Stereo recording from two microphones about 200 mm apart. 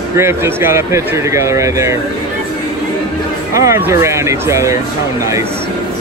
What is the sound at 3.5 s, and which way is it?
Speech, 15° right (ahead or behind).